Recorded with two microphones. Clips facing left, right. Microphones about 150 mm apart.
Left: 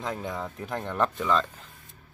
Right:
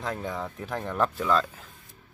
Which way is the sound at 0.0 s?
Centre (ahead or behind).